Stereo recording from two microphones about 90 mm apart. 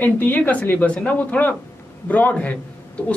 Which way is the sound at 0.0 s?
20° left (ahead or behind).